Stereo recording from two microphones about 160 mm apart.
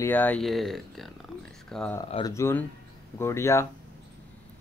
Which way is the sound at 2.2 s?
15° left (ahead or behind).